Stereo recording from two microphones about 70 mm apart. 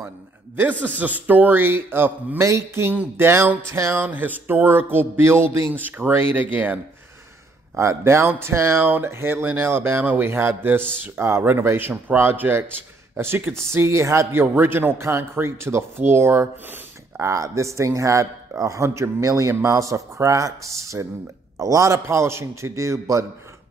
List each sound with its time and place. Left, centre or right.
0.6 s a man's voice: right
2.4 s a man's voice: right
4.0 s a man's voice: right
5.7 s a man's voice: right
7.7 s a man's voice: right
17.2 s a man's voice: right